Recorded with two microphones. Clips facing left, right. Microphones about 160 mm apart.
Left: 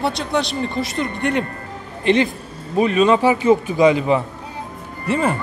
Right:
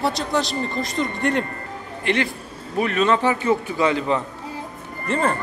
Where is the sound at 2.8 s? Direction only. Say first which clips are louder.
Left 5 dB; 20° left (ahead or behind).